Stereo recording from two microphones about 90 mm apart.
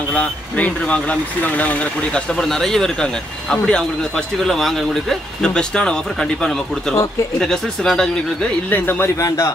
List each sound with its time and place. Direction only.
0.1 s speech: 15° left (ahead or behind)
2.3 s speech: 5° left (ahead or behind)
8.6 s speech: 20° left (ahead or behind)